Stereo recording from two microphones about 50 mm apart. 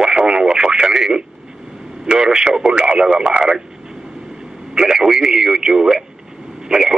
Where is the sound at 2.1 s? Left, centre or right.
Centre.